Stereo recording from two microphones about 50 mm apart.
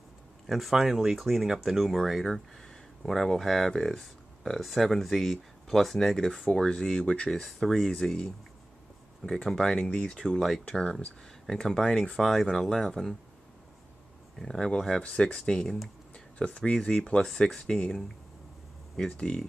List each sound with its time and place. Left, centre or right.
0.5 s speech: centre
7.4 s speech: centre
9.8 s speech: left
12.2 s speech: centre
14.4 s speech: centre